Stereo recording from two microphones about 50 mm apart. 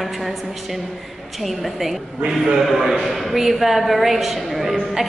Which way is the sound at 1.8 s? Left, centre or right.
Centre.